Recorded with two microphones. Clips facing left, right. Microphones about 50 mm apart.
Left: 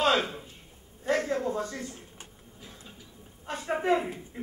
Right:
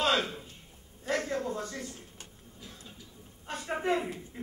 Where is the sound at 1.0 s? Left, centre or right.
Centre.